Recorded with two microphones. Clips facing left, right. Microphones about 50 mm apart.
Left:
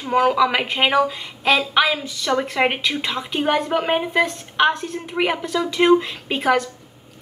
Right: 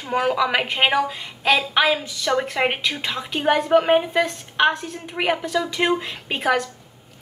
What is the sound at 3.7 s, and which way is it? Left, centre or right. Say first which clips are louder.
Speech: right 4 dB; centre.